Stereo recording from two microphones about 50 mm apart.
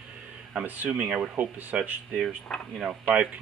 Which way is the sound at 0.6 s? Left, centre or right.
Right.